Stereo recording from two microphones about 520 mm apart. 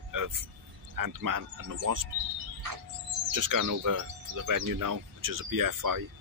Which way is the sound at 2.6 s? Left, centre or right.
Right.